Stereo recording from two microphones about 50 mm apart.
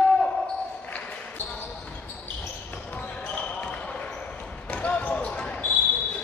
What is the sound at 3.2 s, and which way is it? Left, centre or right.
Basketball bounce, left.